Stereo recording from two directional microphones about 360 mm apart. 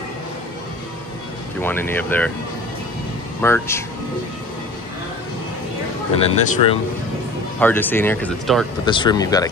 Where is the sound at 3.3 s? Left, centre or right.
Centre.